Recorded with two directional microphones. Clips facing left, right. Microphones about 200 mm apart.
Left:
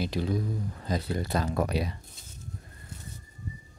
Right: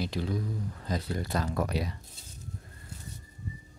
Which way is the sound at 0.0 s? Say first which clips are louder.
Left 3 dB; 15° left (ahead or behind).